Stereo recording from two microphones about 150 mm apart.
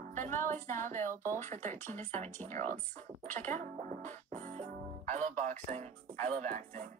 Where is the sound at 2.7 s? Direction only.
55° right (ahead or behind).